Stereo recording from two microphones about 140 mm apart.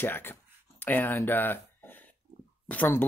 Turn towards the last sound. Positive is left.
turn(degrees=10)  # may be behind; listen again after turning